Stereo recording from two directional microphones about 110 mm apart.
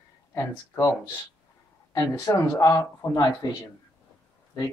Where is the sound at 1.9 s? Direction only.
30° left (ahead or behind).